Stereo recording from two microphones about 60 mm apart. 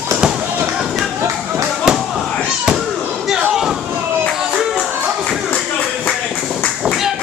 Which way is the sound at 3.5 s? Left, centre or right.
Centre.